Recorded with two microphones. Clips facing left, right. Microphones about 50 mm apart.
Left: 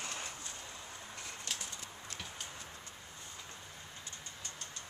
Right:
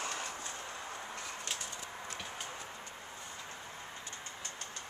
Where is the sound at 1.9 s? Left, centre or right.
Right.